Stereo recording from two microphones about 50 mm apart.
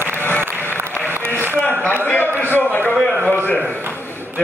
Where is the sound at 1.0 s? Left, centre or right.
Right.